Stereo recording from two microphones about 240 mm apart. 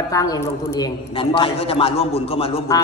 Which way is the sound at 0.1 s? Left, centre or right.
Centre.